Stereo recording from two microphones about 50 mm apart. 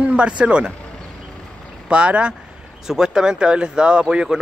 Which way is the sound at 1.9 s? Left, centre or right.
Right.